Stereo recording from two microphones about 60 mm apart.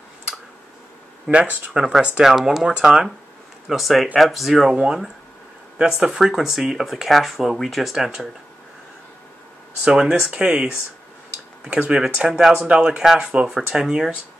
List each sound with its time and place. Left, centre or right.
1.2 s speech: centre
2.2 s speech: centre
3.6 s speech: centre
9.8 s speech: centre